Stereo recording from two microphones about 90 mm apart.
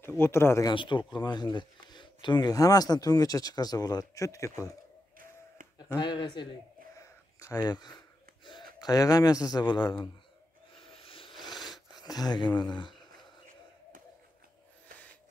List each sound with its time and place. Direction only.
0.2 s speech: 30° left (ahead or behind)
0.7 s speech: 60° left (ahead or behind); by 4.7 s 35° left (ahead or behind)
5.9 s speech: 60° left (ahead or behind)
7.0 s a sound: 35° left (ahead or behind)
8.5 s speech: 50° left (ahead or behind)
10.8 s a sound: 85° left
11.3 s wheeze: centre (ahead or behind)
12.0 s speech: 50° left (ahead or behind)